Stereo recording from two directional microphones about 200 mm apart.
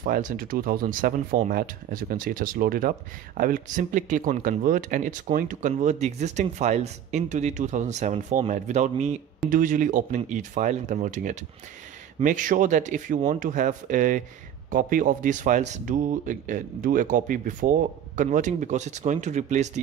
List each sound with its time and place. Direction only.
0.0 s speech: 40° right (ahead or behind)